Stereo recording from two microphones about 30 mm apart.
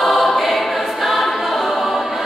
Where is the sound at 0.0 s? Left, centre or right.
Centre.